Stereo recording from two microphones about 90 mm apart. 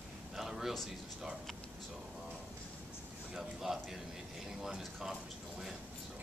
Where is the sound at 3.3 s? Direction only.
5° right (ahead or behind).